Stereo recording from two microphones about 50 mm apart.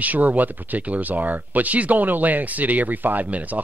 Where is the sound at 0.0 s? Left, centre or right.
Right.